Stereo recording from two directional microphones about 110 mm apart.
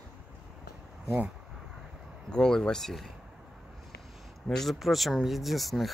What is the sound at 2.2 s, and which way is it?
Speech, 5° left (ahead or behind).